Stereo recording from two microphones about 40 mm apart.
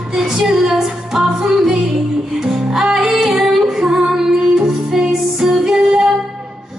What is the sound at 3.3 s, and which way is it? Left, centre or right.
Female singing, centre.